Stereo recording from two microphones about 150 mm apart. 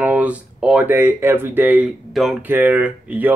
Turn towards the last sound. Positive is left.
turn(degrees=-10)  # may be behind; listen again after turning